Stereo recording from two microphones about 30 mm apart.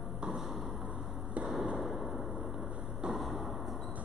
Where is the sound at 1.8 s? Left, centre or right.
Centre.